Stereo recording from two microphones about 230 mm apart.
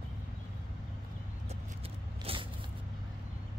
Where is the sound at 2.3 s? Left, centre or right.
Right.